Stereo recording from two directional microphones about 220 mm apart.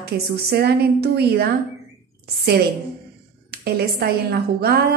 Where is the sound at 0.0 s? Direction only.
45° right (ahead or behind).